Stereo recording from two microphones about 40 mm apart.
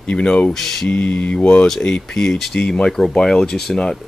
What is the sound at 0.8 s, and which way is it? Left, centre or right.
Speech, left.